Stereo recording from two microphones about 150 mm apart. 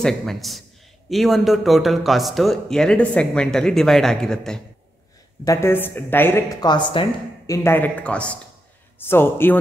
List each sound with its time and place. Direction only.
0.0 s a man's voice: centre (ahead or behind)
5.4 s a woman's voice: 20° left (ahead or behind)
6.6 s a woman's voice: 30° left (ahead or behind)
7.4 s a woman's voice: 20° left (ahead or behind)